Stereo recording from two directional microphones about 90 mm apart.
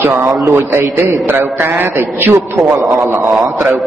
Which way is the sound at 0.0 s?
25° right (ahead or behind).